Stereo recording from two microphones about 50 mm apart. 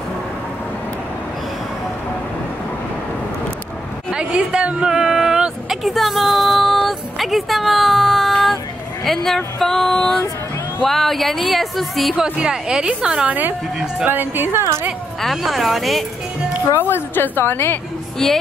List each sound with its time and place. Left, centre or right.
4.1 s a sound: centre
9.0 s speech: centre
12.2 s a woman's voice: centre
13.3 s a woman's voice: right
15.2 s speech: centre
16.8 s a woman's voice: left
18.2 s speech: centre